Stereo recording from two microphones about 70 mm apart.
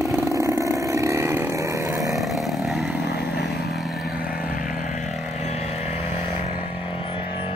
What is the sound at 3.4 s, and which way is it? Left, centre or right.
Vehicle, centre.